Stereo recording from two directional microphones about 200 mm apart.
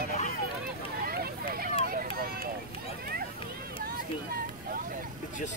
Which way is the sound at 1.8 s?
45° right (ahead or behind).